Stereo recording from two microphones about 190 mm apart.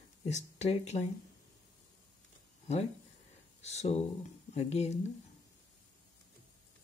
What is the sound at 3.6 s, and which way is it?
Speech, 35° left (ahead or behind).